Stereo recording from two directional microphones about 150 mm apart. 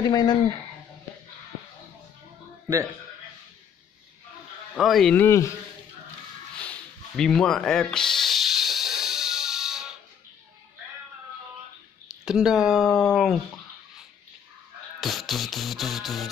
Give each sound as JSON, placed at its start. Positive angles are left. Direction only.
{"t": 0.0, "sound": "speech", "side_deg": 30}
{"t": 2.7, "sound": "speech", "side_deg": -20}
{"t": 4.7, "sound": "speech", "side_deg": 0}
{"t": 5.1, "sound": "speech", "side_deg": 15}
{"t": 6.6, "sound": "a sound", "side_deg": 5}
{"t": 12.1, "sound": "speech", "side_deg": -5}
{"t": 15.0, "sound": "speech", "side_deg": 0}